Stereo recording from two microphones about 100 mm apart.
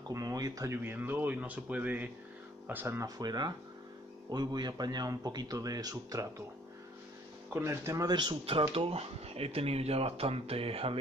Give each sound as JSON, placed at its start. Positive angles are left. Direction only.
{"t": 0.1, "sound": "speech", "side_deg": -40}
{"t": 0.8, "sound": "speech", "side_deg": -20}
{"t": 3.0, "sound": "a man's voice", "side_deg": -40}
{"t": 7.6, "sound": "speech", "side_deg": -30}
{"t": 8.7, "sound": "speech", "side_deg": -75}